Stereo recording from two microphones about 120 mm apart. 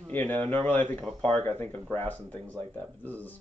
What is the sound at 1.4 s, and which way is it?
Speech, 15° left (ahead or behind).